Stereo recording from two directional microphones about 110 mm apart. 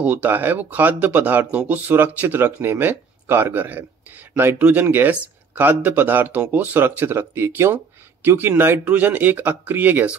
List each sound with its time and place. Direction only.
0.0 s speech: 15° right (ahead or behind)